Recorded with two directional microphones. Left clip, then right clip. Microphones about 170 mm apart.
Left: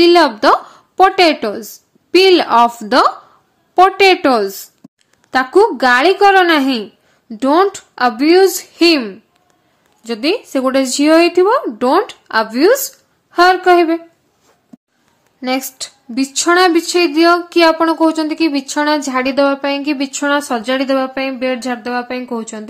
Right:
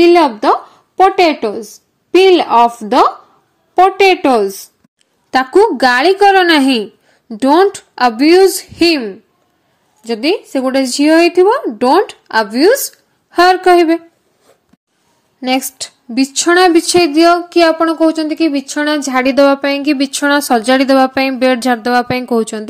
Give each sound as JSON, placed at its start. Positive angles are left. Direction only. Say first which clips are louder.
{"t": 0.0, "sound": "a woman's voice", "louder": "right 1 dB", "side_deg": 5}
{"t": 3.7, "sound": "speech", "louder": "even", "side_deg": 5}
{"t": 5.3, "sound": "a woman's voice", "louder": "right 1 dB", "side_deg": -15}
{"t": 10.0, "sound": "a woman's voice", "louder": "right 2 dB", "side_deg": 0}
{"t": 15.4, "sound": "a woman's voice", "louder": "right 3 dB", "side_deg": -15}
{"t": 16.8, "sound": "a woman's voice", "louder": "right 3 dB", "side_deg": -25}
{"t": 17.1, "sound": "a woman's voice", "louder": "right 2 dB", "side_deg": -10}